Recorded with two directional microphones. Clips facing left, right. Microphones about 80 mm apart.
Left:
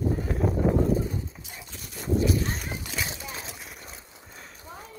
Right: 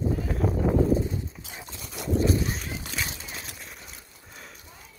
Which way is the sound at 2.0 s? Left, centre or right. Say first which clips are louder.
Even; right.